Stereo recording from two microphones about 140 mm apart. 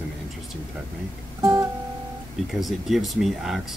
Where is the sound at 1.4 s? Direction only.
20° right (ahead or behind).